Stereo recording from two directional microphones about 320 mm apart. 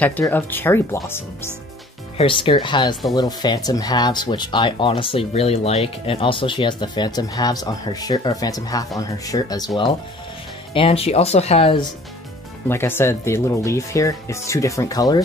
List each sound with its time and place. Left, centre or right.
0.0 s speech: centre
10.7 s speech: centre